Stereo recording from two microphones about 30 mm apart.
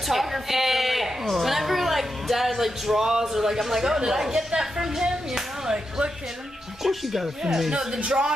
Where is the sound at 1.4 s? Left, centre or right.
Centre.